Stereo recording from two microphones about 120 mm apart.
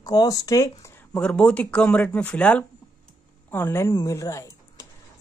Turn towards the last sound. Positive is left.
turn(degrees=25)  # may be behind; listen again after turning